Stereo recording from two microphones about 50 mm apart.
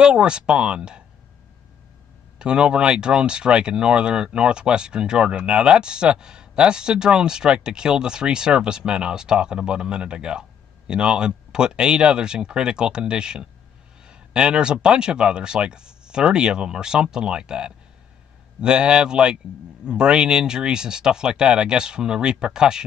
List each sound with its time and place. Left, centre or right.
0.0 s speech: centre
2.3 s a man's voice: centre